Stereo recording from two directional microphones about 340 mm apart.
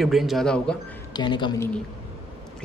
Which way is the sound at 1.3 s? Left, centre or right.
Centre.